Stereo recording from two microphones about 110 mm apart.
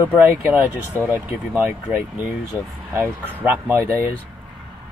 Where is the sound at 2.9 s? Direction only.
15° right (ahead or behind).